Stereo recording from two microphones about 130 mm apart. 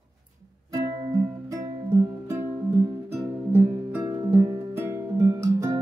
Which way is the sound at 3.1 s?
10° right (ahead or behind).